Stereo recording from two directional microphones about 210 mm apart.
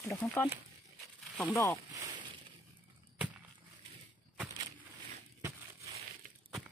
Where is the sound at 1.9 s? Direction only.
20° right (ahead or behind).